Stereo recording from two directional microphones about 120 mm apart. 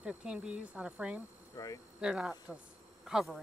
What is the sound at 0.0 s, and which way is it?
Speech, 10° right (ahead or behind).